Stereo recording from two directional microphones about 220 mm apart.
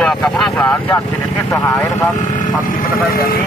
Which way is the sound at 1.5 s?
15° left (ahead or behind).